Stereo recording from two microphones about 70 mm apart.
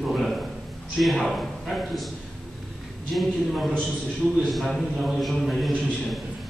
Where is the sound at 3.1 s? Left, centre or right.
Centre.